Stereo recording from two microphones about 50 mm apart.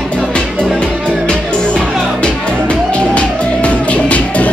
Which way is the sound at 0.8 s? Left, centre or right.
Centre.